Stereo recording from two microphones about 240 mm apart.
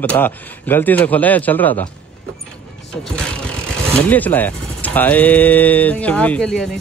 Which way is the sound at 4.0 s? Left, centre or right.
Centre.